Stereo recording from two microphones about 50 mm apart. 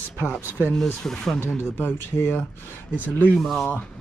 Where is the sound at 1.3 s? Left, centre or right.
Left.